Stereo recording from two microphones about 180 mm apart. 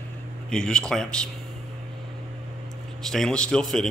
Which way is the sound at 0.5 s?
5° left (ahead or behind).